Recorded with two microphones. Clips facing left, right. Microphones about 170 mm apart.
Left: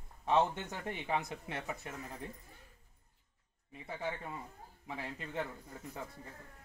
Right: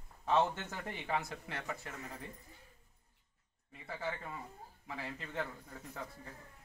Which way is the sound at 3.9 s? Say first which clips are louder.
Left 1 dB; 20° left (ahead or behind).